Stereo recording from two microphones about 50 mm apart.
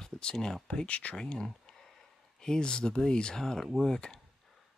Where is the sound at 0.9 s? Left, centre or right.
Left.